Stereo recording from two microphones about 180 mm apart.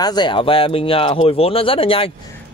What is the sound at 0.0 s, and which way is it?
Speech, 25° left (ahead or behind).